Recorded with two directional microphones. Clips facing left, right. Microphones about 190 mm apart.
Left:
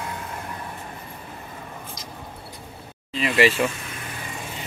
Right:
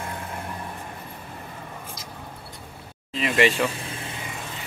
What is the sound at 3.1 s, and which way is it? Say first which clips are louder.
Speech: left 1 dB; centre (ahead or behind).